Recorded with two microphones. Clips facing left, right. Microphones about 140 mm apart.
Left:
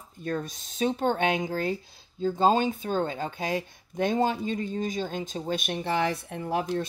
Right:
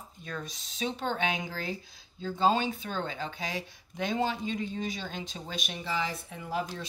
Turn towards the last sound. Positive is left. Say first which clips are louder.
# left 5 dB
turn(degrees=55)  # may be behind; listen again after turning